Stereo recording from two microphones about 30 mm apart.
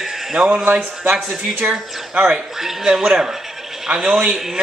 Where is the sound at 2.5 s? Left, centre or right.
Centre.